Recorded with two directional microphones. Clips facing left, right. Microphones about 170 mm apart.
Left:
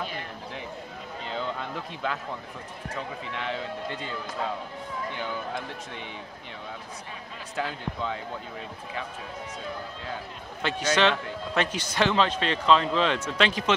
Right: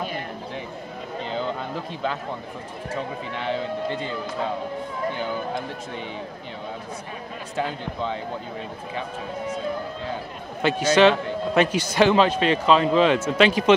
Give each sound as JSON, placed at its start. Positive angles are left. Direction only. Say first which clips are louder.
{"t": 1.3, "sound": "a sound", "louder": "right 3 dB", "side_deg": -30}
{"t": 2.9, "sound": "a man's voice", "louder": "right 5 dB", "side_deg": -35}
{"t": 5.1, "sound": "a man's voice", "louder": "right 5 dB", "side_deg": -35}
{"t": 7.5, "sound": "a man's voice", "louder": "right 4 dB", "side_deg": -25}
{"t": 10.6, "sound": "a man's voice", "louder": "right 7 dB", "side_deg": -10}